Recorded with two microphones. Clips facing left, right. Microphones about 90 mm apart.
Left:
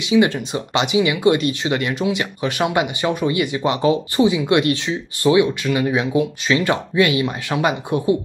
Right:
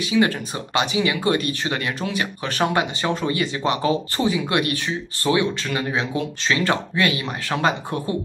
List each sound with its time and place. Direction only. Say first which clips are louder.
0.0 s speech: left 4 dB; 20° left (ahead or behind)